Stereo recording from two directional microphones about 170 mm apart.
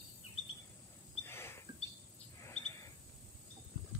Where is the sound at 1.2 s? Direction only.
15° left (ahead or behind).